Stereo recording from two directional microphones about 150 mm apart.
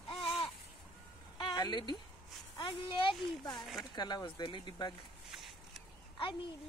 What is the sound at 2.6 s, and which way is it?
Speech, 35° left (ahead or behind).